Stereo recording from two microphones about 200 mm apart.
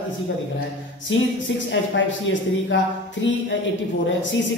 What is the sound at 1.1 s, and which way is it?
A woman's voice, 70° left (ahead or behind).